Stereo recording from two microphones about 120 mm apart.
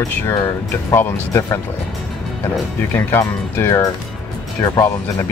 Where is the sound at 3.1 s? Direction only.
20° left (ahead or behind).